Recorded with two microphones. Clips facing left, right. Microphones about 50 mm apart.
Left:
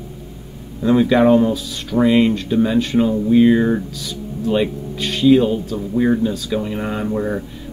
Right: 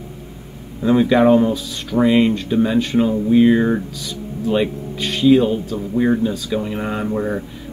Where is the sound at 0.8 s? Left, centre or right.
Centre.